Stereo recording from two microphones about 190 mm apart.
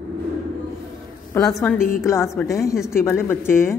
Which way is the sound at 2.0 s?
15° left (ahead or behind).